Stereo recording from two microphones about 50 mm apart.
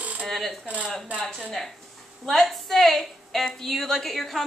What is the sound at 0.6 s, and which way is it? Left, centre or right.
Speech, right.